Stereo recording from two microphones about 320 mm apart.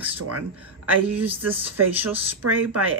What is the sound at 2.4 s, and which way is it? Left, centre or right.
Speech, right.